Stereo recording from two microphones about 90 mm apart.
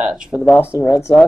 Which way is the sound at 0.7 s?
40° left (ahead or behind).